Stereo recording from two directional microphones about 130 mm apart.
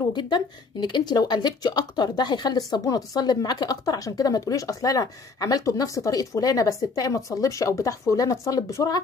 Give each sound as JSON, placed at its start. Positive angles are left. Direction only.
{"t": 0.1, "sound": "speech", "side_deg": 35}